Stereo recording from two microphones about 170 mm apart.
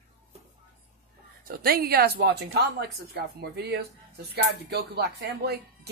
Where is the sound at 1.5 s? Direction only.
65° right (ahead or behind).